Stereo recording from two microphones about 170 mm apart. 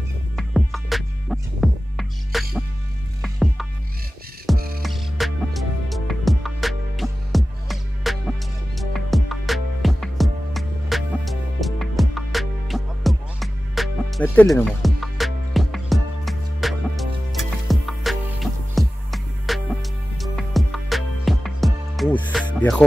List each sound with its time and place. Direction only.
0.4 s music: centre (ahead or behind)
4.6 s music: 60° right (ahead or behind)
4.8 s music: centre (ahead or behind)
14.2 s music: 10° left (ahead or behind)
14.5 s music: centre (ahead or behind)